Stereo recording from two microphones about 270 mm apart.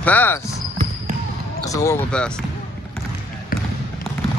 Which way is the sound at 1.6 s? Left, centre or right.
Centre.